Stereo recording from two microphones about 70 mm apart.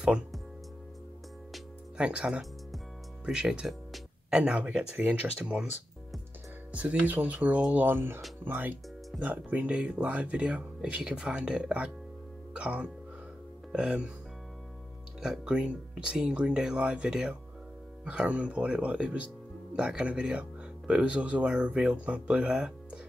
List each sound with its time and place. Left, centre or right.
2.0 s speech: centre
5.4 s speech: centre
6.7 s speech: centre
12.5 s music: centre
13.7 s speech: centre
15.2 s speech: centre